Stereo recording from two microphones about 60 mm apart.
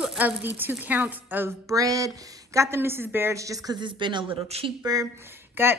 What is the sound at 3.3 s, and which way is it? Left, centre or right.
Speech, right.